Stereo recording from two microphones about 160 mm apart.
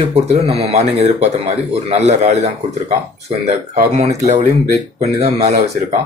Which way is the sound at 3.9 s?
45° right (ahead or behind).